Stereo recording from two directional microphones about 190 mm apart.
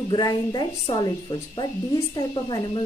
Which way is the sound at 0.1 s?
20° left (ahead or behind).